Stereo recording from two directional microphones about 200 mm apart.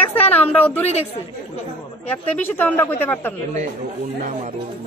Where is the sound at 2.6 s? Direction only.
10° left (ahead or behind).